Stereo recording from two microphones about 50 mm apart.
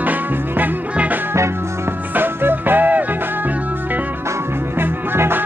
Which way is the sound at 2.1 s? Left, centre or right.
Right.